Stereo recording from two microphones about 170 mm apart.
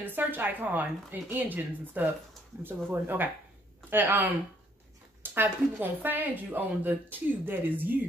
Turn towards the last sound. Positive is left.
turn(degrees=-10)  # may be behind; listen again after turning